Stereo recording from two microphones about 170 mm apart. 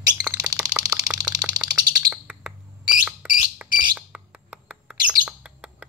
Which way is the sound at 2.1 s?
5° right (ahead or behind).